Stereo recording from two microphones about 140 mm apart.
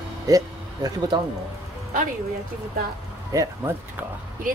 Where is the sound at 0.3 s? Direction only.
25° right (ahead or behind).